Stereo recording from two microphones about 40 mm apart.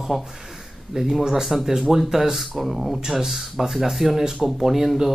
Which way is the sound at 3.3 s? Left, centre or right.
Centre.